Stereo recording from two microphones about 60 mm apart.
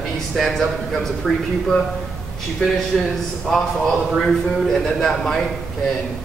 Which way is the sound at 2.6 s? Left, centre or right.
Centre.